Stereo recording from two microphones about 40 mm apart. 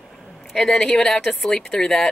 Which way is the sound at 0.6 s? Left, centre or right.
Centre.